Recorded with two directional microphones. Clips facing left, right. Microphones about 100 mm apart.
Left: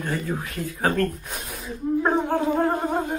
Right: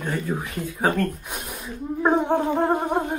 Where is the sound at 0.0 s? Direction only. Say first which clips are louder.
Right 1 dB; 15° right (ahead or behind).